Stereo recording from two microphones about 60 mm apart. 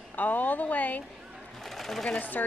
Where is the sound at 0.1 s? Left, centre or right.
Left.